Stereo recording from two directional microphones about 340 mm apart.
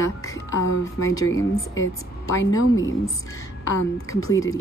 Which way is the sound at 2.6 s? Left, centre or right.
Left.